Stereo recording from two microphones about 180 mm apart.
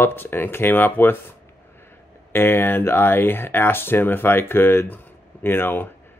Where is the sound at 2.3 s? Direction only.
10° left (ahead or behind).